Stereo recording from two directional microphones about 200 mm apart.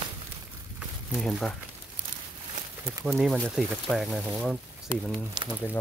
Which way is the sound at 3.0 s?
Centre (ahead or behind).